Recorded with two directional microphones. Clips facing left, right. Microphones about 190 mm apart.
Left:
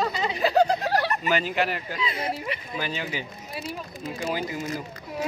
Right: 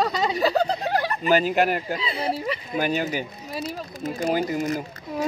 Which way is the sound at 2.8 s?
45° right (ahead or behind).